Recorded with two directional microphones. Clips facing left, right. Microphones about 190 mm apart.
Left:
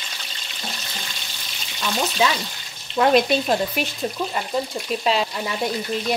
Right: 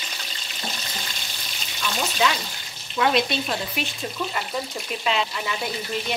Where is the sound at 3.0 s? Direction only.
45° left (ahead or behind).